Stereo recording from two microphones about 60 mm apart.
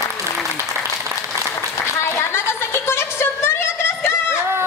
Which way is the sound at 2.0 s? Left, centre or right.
Left.